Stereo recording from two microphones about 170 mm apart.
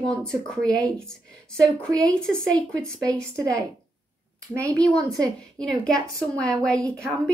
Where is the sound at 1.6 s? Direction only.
5° left (ahead or behind).